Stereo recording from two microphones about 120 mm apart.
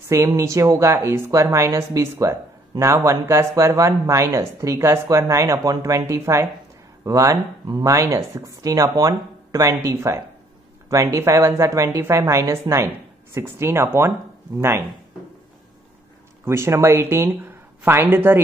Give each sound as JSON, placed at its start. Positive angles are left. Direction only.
{"t": 0.1, "sound": "a woman's voice", "side_deg": -25}
{"t": 16.4, "sound": "a woman's voice", "side_deg": -20}